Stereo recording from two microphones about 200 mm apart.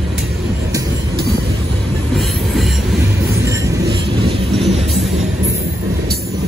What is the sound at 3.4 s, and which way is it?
Train, 15° right (ahead or behind).